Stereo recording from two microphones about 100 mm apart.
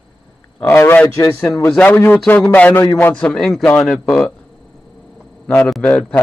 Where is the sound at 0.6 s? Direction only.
25° left (ahead or behind).